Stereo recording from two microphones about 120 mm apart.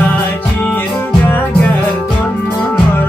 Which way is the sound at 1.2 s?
15° left (ahead or behind).